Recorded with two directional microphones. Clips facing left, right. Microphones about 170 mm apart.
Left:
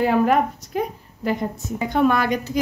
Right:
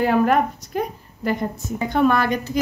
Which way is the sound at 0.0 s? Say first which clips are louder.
Even; 5° left (ahead or behind).